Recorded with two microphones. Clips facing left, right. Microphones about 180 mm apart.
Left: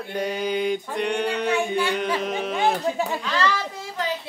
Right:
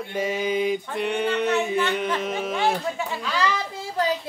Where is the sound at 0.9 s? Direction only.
5° right (ahead or behind).